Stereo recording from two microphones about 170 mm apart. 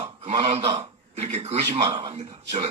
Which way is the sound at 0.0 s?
40° right (ahead or behind).